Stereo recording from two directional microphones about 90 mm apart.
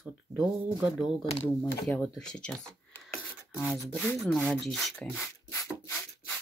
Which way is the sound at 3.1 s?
10° left (ahead or behind).